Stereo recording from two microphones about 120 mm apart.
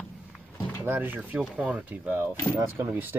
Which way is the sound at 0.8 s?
15° right (ahead or behind).